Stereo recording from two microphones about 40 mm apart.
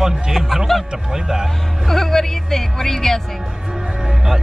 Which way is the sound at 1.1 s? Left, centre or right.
Centre.